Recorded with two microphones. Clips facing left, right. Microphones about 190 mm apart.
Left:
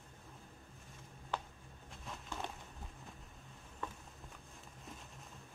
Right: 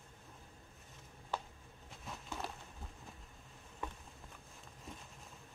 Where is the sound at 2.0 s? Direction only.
5° right (ahead or behind).